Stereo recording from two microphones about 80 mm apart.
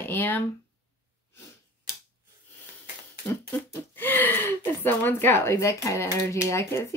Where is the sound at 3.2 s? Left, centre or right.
Left.